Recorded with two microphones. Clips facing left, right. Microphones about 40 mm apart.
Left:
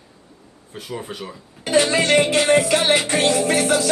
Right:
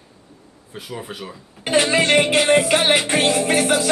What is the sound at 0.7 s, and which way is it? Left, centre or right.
Speech, centre.